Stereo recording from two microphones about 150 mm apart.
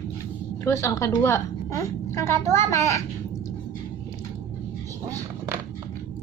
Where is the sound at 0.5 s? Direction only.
20° left (ahead or behind).